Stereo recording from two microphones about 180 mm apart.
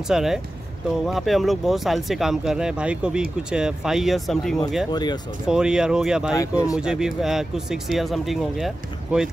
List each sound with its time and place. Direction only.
0.1 s speech: centre (ahead or behind)
4.9 s speech: 25° left (ahead or behind)
5.5 s speech: 5° right (ahead or behind)
6.3 s speech: 20° left (ahead or behind)
6.8 s speech: 5° right (ahead or behind)